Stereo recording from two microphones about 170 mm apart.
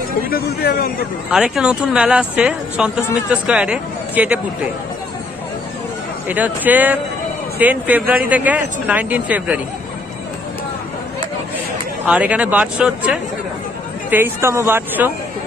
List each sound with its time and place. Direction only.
0.3 s speech: 65° left (ahead or behind)
1.3 s speech: 5° right (ahead or behind)
6.2 s speech: 10° right (ahead or behind)
12.1 s speech: 10° right (ahead or behind)